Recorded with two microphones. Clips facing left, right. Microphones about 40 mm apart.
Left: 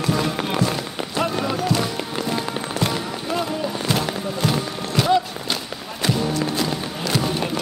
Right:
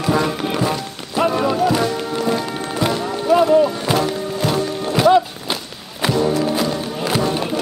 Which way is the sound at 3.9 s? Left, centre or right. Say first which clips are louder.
Right 5 dB; centre.